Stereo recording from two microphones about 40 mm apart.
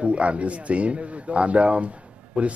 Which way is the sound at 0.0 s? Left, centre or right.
Right.